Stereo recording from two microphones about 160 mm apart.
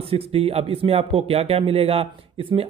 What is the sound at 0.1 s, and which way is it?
Speech, 40° right (ahead or behind).